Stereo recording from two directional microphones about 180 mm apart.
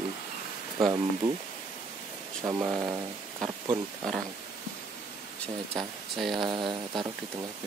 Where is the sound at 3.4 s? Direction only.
20° right (ahead or behind).